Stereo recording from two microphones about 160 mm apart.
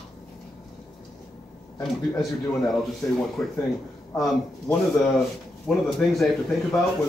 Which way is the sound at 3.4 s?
5° left (ahead or behind).